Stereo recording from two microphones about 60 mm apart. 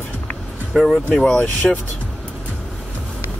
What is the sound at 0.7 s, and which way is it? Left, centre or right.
Speech, centre.